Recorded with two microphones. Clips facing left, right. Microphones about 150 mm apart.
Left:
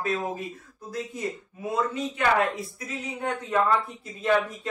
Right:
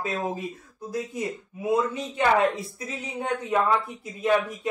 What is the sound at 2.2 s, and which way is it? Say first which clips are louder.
Speech: right 3 dB; 25° right (ahead or behind).